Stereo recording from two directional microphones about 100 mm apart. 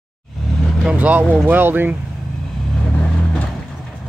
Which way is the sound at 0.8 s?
15° right (ahead or behind).